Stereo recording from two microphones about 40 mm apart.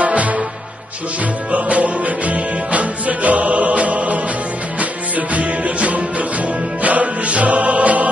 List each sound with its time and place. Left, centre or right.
0.0 s music: right
1.5 s music: right